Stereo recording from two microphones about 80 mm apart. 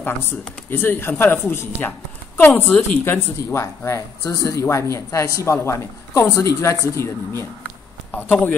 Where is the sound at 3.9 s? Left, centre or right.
Left.